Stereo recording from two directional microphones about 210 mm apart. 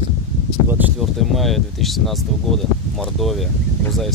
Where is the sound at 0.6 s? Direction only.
10° right (ahead or behind).